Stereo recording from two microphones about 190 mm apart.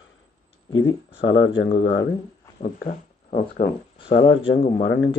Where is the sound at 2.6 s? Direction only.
45° left (ahead or behind).